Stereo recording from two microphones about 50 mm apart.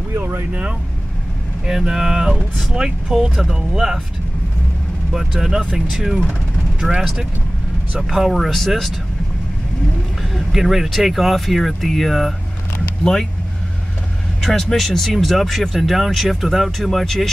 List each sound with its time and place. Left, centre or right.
0.2 s speech: right
1.7 s speech: centre
5.4 s speech: centre
10.3 s speech: centre
14.4 s speech: centre